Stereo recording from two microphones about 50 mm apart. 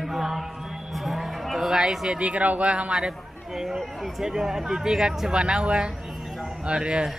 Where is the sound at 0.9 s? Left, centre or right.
Centre.